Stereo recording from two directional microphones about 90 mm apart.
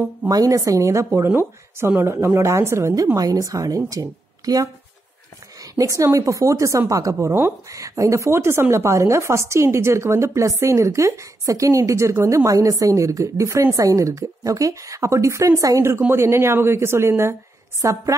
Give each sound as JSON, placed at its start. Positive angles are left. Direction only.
{"t": 0.3, "sound": "a woman's voice", "side_deg": -40}
{"t": 3.2, "sound": "a woman's voice", "side_deg": -40}
{"t": 15.9, "sound": "a woman's voice", "side_deg": -25}